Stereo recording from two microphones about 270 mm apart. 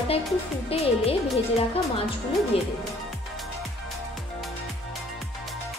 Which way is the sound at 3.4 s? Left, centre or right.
Centre.